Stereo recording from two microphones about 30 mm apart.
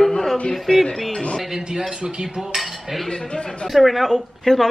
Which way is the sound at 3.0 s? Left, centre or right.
Left.